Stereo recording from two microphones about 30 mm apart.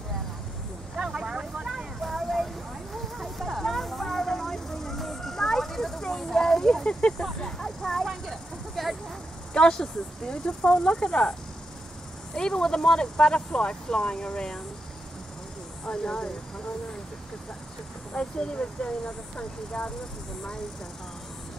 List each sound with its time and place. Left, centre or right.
0.9 s speech: right
2.1 s a sound: centre
3.2 s vehicle: centre; by 7.0 s left
7.1 s speech: left
7.4 s a sound: centre
8.1 s vehicle: centre
9.5 s speech: left
12.4 s speech: left
15.8 s speech: left
18.1 s speech: left